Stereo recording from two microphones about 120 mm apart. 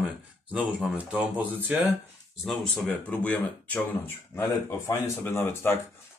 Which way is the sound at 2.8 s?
10° left (ahead or behind).